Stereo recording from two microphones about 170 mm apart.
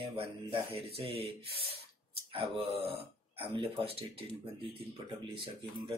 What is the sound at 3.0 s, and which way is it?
Speech, 35° right (ahead or behind).